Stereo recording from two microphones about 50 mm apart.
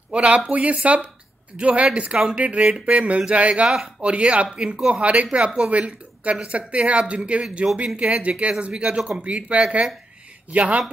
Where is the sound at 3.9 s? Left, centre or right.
Right.